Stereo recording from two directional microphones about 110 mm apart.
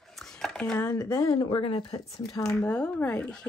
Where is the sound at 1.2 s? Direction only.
50° left (ahead or behind).